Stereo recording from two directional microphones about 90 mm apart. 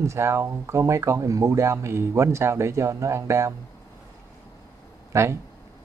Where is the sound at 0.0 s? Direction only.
30° right (ahead or behind).